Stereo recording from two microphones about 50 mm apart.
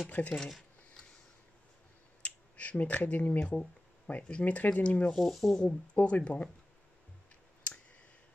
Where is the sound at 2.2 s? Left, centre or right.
Left.